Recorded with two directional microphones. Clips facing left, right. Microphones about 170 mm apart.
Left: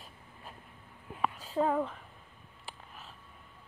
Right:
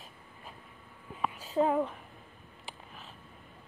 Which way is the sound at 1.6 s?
10° right (ahead or behind).